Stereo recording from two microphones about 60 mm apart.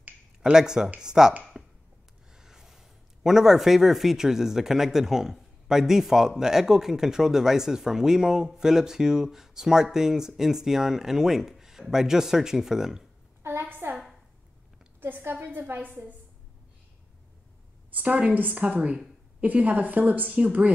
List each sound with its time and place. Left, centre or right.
0.4 s speech: centre
1.5 s a sound: centre
2.3 s speech: centre
13.4 s a sound: right
15.0 s a woman's voice: right
17.9 s a woman's voice: right